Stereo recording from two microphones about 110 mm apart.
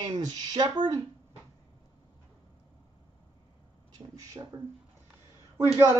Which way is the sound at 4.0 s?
35° right (ahead or behind).